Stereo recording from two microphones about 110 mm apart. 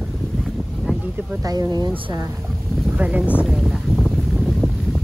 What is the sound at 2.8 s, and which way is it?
Speech, 10° right (ahead or behind).